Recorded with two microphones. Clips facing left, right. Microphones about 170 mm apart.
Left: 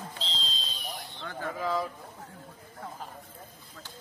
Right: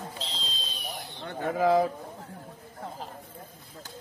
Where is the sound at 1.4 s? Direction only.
65° right (ahead or behind).